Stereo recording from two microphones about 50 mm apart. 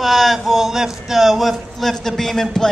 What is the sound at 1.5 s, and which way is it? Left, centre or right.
Speech, centre.